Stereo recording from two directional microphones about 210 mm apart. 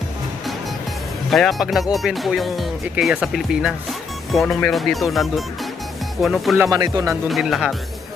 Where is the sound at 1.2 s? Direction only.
Centre (ahead or behind).